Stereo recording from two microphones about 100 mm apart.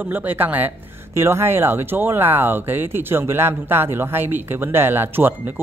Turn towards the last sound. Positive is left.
turn(degrees=-20)  # may be behind; listen again after turning